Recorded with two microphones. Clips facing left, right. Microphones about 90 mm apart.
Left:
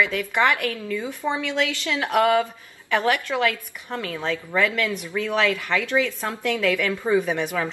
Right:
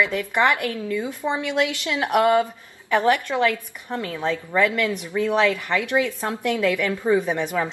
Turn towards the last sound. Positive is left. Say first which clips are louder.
# right 1 dB
turn(degrees=-20)  # may be behind; listen again after turning